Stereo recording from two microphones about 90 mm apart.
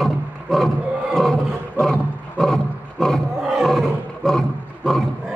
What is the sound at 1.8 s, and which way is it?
Roaring cats, 10° left (ahead or behind).